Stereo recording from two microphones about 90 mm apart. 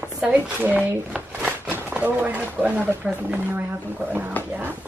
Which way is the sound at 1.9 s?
20° right (ahead or behind).